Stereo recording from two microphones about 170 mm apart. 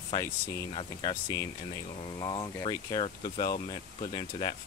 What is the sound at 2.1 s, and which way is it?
Speech, 25° left (ahead or behind).